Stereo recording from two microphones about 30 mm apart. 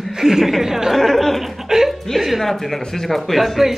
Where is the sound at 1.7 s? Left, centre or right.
Centre.